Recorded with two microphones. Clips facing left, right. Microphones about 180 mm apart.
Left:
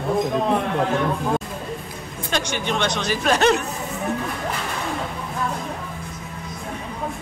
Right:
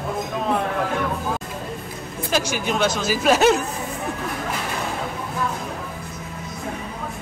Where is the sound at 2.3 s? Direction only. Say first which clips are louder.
Right 1 dB; 5° right (ahead or behind).